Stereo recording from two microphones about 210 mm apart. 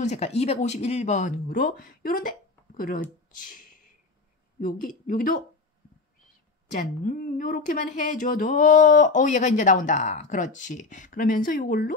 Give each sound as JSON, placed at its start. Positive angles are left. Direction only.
{"t": 0.0, "sound": "speech", "side_deg": 30}
{"t": 6.7, "sound": "speech", "side_deg": 40}